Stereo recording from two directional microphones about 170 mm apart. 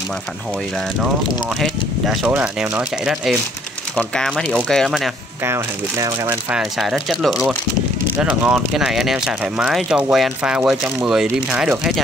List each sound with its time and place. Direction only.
1.6 s speech: 5° right (ahead or behind)
5.4 s speech: 15° right (ahead or behind)
6.5 s speech: centre (ahead or behind)